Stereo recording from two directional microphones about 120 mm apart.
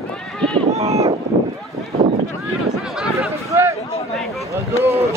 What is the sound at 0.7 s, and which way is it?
Speech, 65° right (ahead or behind).